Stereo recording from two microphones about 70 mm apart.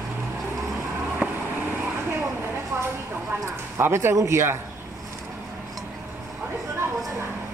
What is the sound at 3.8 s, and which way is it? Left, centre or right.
Speech, right.